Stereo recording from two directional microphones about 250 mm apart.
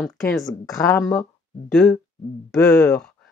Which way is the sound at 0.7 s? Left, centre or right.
Centre.